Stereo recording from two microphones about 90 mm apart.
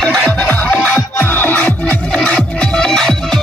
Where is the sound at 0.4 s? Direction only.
15° left (ahead or behind).